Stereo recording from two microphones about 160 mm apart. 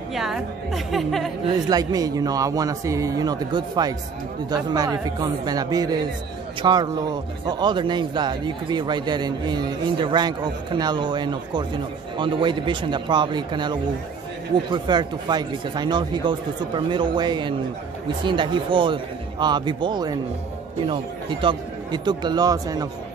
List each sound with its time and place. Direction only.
0.1 s a woman's voice: centre (ahead or behind)
1.5 s a man's voice: 25° right (ahead or behind)